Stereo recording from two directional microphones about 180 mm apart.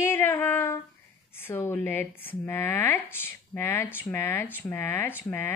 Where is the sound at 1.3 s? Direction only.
10° left (ahead or behind).